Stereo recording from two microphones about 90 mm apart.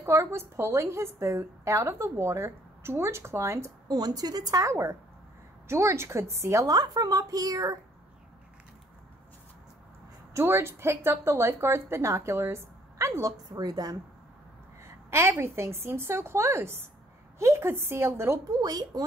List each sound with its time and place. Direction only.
0.0 s a woman's voice: 30° right (ahead or behind)
3.9 s a woman's voice: 45° right (ahead or behind)
10.3 s a woman's voice: 30° right (ahead or behind)
13.5 s a woman's voice: 45° right (ahead or behind)
14.8 s a woman's voice: 30° right (ahead or behind)
18.6 s a woman's voice: 45° right (ahead or behind)